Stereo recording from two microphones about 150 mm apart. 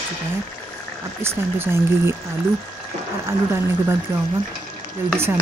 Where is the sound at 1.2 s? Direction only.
15° right (ahead or behind).